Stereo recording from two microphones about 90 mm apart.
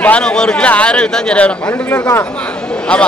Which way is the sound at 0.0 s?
10° left (ahead or behind).